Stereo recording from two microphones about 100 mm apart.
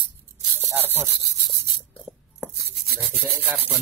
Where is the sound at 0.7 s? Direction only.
20° right (ahead or behind).